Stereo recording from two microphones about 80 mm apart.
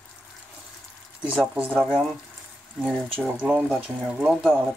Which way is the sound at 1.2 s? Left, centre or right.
Centre.